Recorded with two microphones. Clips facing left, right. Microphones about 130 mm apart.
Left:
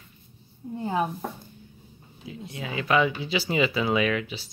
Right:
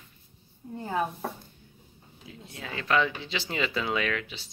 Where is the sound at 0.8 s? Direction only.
15° left (ahead or behind).